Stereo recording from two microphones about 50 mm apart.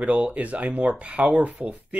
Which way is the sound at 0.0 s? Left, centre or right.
Right.